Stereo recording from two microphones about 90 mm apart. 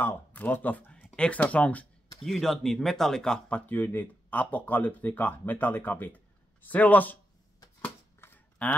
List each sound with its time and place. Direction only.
0.0 s speech: 20° left (ahead or behind)
2.2 s speech: 5° left (ahead or behind); by 7.2 s 20° left (ahead or behind)
7.8 s a sound: 25° left (ahead or behind)
8.6 s speech: 15° left (ahead or behind)